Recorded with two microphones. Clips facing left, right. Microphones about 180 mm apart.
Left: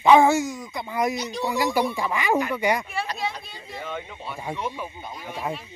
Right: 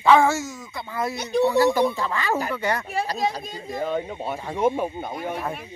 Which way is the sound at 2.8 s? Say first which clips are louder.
Right 4 dB; 40° right (ahead or behind).